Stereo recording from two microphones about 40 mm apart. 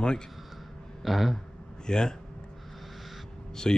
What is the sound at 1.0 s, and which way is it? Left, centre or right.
Speech, centre.